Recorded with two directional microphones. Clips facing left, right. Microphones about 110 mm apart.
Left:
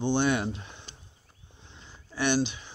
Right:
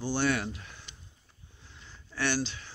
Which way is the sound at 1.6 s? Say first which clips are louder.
Left 2 dB; 20° left (ahead or behind).